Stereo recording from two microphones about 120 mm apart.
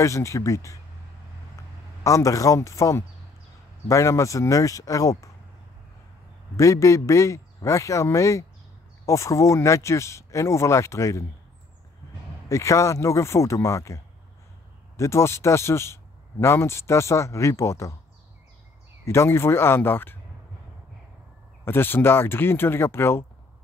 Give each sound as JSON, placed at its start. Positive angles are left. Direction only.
{"t": 0.0, "sound": "speech", "side_deg": 25}
{"t": 2.0, "sound": "speech", "side_deg": 25}
{"t": 6.5, "sound": "speech", "side_deg": 25}
{"t": 12.4, "sound": "speech", "side_deg": 25}
{"t": 19.0, "sound": "speech", "side_deg": 20}
{"t": 21.6, "sound": "speech", "side_deg": 20}